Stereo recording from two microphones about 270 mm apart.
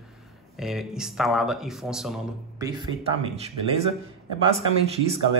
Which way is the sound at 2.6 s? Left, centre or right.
Centre.